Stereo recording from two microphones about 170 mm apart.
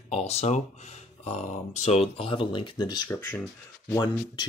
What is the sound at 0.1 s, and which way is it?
Speech, 40° left (ahead or behind).